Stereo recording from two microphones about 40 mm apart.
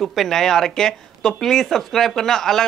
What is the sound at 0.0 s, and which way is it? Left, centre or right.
A man's voice, centre.